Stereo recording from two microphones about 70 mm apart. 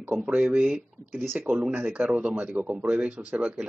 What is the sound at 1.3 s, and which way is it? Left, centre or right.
Speech, right.